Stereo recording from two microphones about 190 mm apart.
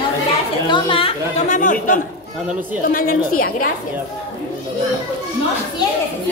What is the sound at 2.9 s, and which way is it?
Speech, 50° left (ahead or behind).